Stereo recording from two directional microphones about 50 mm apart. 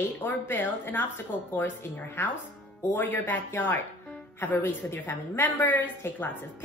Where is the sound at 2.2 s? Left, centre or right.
Left.